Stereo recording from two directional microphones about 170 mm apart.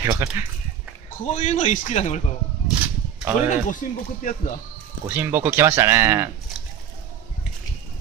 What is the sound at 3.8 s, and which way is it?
Speech, 50° left (ahead or behind).